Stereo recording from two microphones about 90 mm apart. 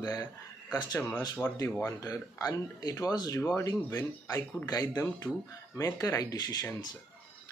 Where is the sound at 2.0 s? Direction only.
40° left (ahead or behind).